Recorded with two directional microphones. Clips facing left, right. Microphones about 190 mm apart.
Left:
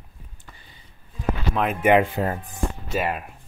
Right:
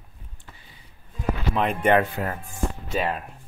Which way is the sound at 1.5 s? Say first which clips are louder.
Left 1 dB; 5° left (ahead or behind).